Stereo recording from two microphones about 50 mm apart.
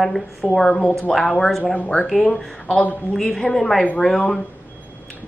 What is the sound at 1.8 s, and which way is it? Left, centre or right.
Speech, left.